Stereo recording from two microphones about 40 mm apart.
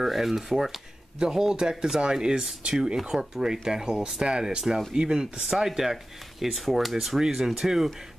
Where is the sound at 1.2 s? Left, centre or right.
Centre.